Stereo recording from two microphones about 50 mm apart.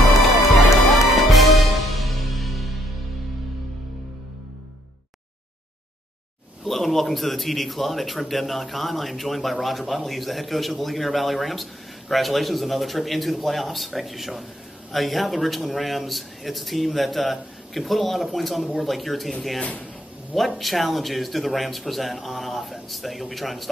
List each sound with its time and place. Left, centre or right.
1.1 s music: centre
6.6 s a man's voice: centre
19.6 s speech: left
20.3 s a man's voice: centre